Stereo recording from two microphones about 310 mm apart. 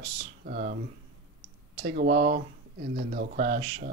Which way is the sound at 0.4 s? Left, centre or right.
Right.